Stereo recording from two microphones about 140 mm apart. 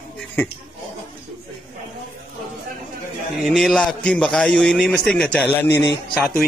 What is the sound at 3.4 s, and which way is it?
A man's voice, 5° left (ahead or behind).